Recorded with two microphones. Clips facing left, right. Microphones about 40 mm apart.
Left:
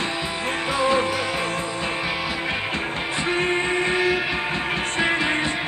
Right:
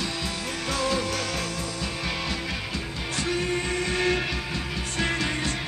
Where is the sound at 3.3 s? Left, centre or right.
Left.